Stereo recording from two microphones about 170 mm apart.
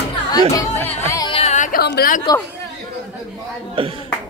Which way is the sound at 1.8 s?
65° left (ahead or behind).